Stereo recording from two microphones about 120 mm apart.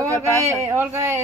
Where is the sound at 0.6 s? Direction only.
20° right (ahead or behind).